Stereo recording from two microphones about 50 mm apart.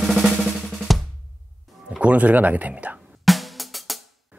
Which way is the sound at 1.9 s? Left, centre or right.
Right.